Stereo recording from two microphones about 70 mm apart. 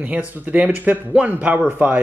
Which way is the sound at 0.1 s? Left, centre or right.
Right.